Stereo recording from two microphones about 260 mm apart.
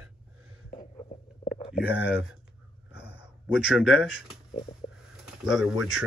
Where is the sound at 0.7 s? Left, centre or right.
Left.